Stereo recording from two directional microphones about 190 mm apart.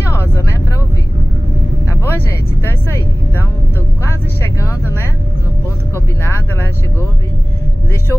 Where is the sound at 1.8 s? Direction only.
15° left (ahead or behind).